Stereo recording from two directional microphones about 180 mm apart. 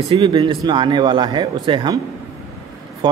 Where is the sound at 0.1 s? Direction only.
30° right (ahead or behind).